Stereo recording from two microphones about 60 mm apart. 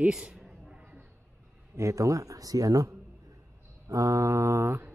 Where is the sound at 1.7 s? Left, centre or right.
Right.